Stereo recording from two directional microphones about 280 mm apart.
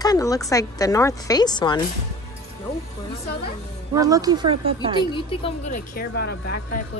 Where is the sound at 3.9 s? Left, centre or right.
Centre.